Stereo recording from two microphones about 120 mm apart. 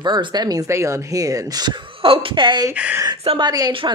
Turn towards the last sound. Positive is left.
turn(degrees=-40)  # may be behind; listen again after turning